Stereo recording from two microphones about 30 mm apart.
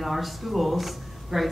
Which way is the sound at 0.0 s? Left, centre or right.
Centre.